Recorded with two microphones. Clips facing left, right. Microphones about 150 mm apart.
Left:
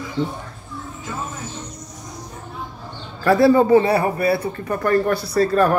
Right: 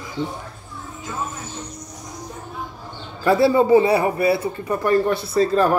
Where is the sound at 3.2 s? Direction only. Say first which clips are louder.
Left 2 dB; 25° right (ahead or behind).